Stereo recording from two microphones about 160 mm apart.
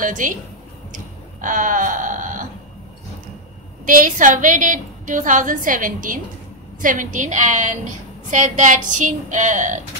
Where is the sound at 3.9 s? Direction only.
55° right (ahead or behind).